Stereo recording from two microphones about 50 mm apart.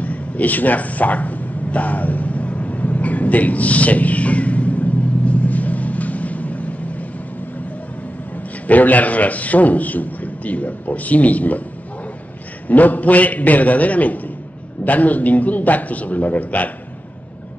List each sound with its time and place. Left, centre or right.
0.0 s dog: left
8.4 s a man's voice: left
12.6 s a man's voice: left